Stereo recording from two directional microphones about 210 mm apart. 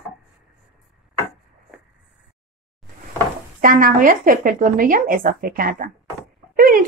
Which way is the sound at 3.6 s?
40° right (ahead or behind).